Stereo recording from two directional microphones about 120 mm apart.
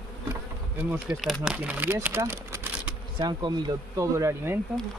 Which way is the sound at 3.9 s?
25° right (ahead or behind).